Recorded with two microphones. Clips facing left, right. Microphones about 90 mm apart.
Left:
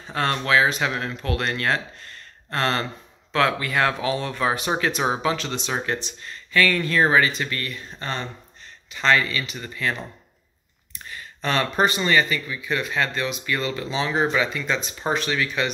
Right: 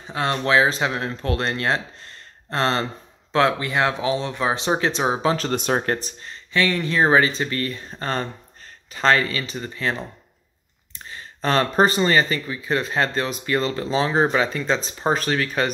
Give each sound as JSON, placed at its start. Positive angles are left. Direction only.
{"t": 0.0, "sound": "a sound", "side_deg": -15}
{"t": 0.4, "sound": "speech", "side_deg": -30}
{"t": 6.5, "sound": "speech", "side_deg": -20}
{"t": 11.1, "sound": "speech", "side_deg": -35}